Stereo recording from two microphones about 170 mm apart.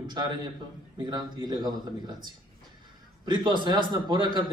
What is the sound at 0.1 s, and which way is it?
A man's voice, 25° right (ahead or behind).